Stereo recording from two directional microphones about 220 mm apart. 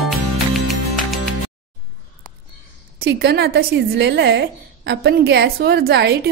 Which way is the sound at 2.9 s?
50° right (ahead or behind).